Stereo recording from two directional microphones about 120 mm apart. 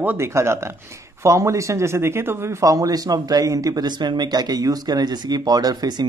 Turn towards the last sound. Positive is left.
turn(degrees=-35)  # may be behind; listen again after turning